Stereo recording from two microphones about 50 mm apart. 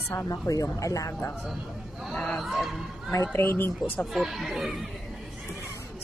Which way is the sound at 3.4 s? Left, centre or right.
Left.